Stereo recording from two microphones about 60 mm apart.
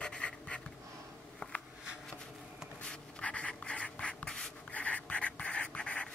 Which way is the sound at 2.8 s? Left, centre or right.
Centre.